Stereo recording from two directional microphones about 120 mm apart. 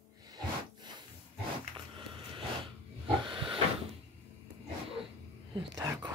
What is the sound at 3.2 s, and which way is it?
Pig, 45° right (ahead or behind).